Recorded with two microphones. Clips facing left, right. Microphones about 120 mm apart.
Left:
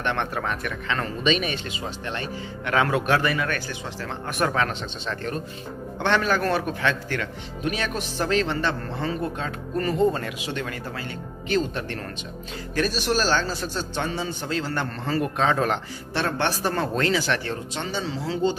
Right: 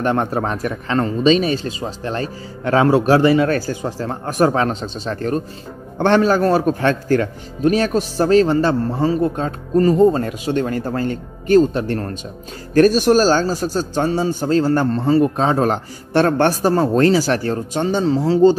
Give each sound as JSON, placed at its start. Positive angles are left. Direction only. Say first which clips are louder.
{"t": 0.0, "sound": "speech", "louder": "right 8 dB", "side_deg": -35}